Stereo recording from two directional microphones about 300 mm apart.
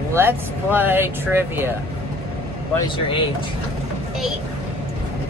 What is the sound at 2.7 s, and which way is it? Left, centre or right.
Speech, centre.